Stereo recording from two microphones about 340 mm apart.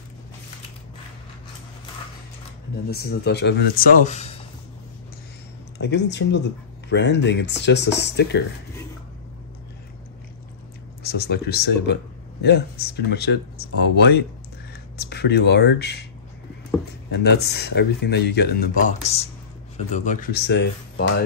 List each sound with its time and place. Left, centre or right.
2.9 s speech: left
5.8 s speech: left
11.0 s speech: left
17.1 s speech: left